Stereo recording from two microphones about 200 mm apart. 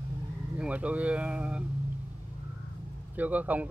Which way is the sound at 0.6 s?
5° right (ahead or behind).